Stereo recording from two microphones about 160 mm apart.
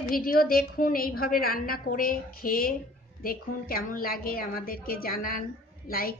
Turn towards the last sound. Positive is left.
turn(degrees=65)  # may be behind; listen again after turning